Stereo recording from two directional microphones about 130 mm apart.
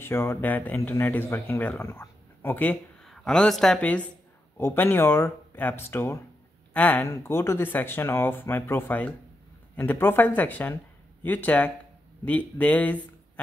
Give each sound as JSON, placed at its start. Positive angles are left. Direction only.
{"t": 0.0, "sound": "a woman's voice", "side_deg": 20}